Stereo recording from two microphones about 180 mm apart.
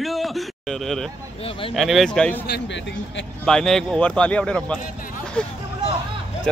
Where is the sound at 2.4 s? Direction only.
70° left (ahead or behind); by 3.3 s 90° left.